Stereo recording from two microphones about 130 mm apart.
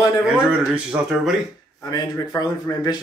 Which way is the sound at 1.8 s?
30° left (ahead or behind).